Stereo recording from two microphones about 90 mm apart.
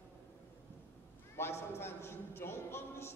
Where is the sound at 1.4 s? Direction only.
25° left (ahead or behind).